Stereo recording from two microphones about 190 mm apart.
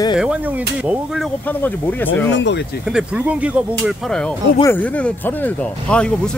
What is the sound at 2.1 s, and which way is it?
Speech, 70° left (ahead or behind).